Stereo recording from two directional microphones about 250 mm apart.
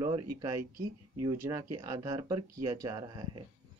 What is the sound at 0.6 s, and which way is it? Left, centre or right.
Speech, right.